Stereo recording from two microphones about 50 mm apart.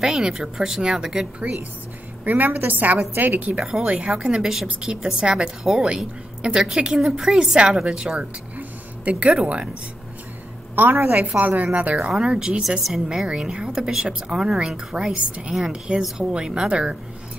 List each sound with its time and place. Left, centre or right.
0.0 s a woman's voice: centre
2.2 s a woman's voice: right
3.5 s a woman's voice: centre
8.5 s a sound: right
10.8 s a woman's voice: right
12.2 s a woman's voice: centre